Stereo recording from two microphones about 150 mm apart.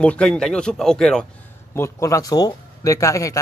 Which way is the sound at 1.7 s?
20° left (ahead or behind).